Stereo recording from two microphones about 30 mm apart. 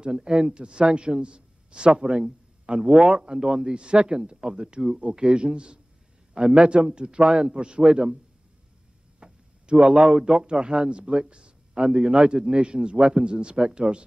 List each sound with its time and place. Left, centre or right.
0.0 s a man's voice: right
9.2 s a man's voice: right